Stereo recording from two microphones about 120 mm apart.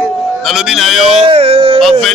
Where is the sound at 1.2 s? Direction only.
55° right (ahead or behind).